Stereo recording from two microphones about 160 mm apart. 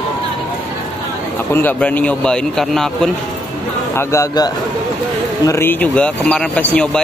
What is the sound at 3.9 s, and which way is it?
Speech, 20° left (ahead or behind).